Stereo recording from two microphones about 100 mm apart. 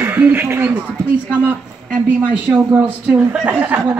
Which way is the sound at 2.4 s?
15° right (ahead or behind).